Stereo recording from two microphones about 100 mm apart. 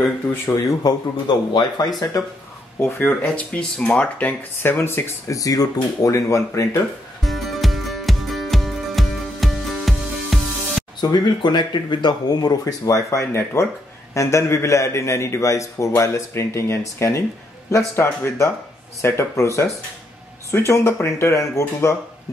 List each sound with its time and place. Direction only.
0.3 s a man's voice: 25° left (ahead or behind)
0.8 s speech: 45° left (ahead or behind)
2.8 s speech: 15° left (ahead or behind)
5.4 s speech: 35° left (ahead or behind)
7.2 s music: centre (ahead or behind)
11.0 s a man's voice: 45° left (ahead or behind); by 21.9 s 30° left (ahead or behind)